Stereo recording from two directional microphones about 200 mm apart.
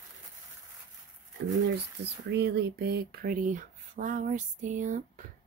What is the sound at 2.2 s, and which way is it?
Speech, 60° right (ahead or behind).